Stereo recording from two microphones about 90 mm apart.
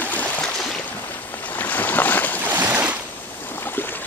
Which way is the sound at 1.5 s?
20° left (ahead or behind).